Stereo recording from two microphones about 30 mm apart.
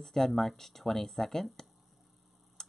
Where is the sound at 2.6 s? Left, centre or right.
Centre.